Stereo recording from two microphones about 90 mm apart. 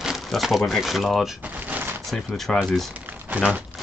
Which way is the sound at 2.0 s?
5° left (ahead or behind).